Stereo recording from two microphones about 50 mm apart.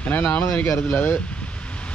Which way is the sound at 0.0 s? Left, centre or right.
Left.